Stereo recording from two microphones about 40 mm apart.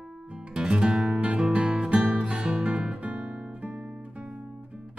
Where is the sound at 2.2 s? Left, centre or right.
Right.